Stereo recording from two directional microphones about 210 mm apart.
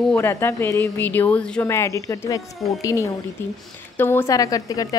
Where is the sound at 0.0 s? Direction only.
10° left (ahead or behind).